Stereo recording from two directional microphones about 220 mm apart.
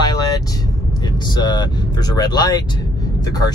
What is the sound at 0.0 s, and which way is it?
Vehicle, 20° left (ahead or behind).